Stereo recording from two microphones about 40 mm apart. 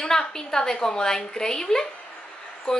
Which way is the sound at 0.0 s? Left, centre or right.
Centre.